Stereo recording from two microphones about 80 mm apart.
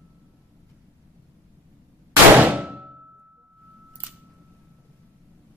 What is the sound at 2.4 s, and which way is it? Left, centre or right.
Clang, centre.